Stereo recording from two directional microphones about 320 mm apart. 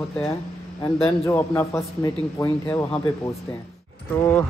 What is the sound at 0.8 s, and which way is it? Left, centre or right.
Speech, centre.